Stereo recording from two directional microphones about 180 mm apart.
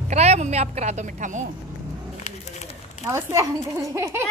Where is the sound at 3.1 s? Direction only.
15° right (ahead or behind).